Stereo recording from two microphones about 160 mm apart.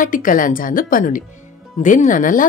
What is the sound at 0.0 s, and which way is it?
Speech, 55° left (ahead or behind).